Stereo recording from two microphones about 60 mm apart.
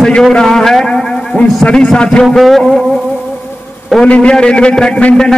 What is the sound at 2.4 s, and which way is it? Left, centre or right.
Speech, centre.